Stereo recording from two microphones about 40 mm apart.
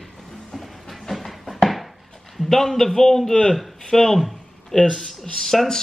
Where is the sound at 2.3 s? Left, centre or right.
Centre.